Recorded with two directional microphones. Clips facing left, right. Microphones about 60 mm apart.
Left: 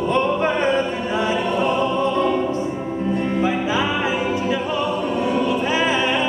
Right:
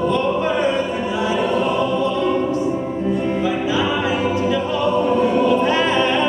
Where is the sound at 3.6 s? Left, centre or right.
Left.